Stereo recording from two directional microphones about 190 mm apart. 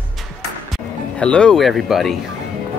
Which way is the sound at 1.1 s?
5° left (ahead or behind).